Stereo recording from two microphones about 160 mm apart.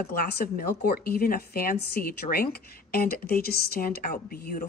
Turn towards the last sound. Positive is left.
turn(degrees=65)  # may be behind; listen again after turning